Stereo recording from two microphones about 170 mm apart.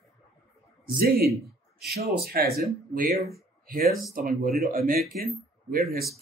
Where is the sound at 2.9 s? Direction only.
45° right (ahead or behind).